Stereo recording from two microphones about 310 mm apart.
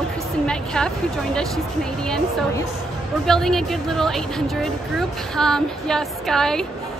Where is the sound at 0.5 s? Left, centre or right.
Centre.